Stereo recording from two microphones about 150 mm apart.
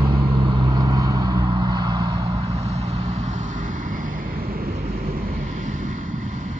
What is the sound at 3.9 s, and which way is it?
Vehicle, 70° right (ahead or behind).